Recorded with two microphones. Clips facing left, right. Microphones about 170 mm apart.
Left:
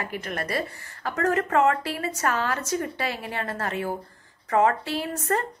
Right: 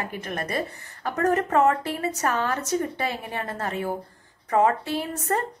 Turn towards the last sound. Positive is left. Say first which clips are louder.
# even
turn(degrees=-20)  # may be behind; listen again after turning